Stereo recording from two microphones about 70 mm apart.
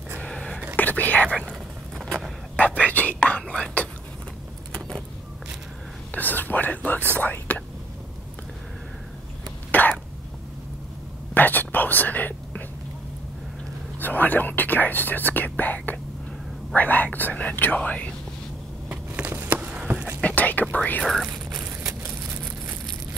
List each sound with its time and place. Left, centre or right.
0.2 s a sound: centre
0.7 s whispering: left
2.5 s whispering: left
6.1 s whispering: left
9.7 s throat clearing: left
11.3 s whispering: left
13.9 s whispering: left
16.7 s speech: left
18.9 s a sound: right
20.2 s whispering: left
21.0 s whispering: centre
21.3 s a sound: right
21.8 s a sound: right